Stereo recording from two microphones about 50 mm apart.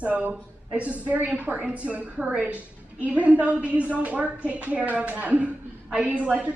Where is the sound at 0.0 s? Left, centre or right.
Right.